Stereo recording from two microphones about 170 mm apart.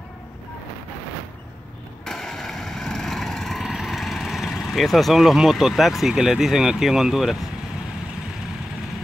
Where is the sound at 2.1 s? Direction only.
5° left (ahead or behind).